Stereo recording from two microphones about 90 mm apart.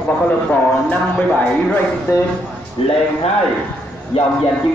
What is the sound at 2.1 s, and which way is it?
Speech, 30° left (ahead or behind).